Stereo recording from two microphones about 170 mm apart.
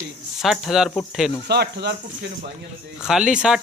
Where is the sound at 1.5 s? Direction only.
75° right (ahead or behind).